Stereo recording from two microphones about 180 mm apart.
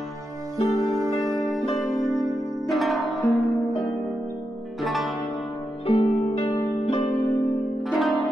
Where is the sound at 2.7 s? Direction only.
Centre (ahead or behind).